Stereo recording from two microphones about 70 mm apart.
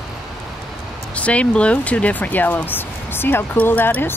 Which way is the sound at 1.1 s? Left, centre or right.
Centre.